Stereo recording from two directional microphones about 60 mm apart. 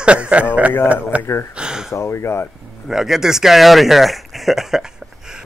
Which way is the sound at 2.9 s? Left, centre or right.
Centre.